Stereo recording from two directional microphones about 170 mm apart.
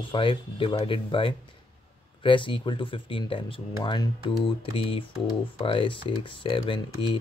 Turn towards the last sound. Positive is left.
turn(degrees=30)  # may be behind; listen again after turning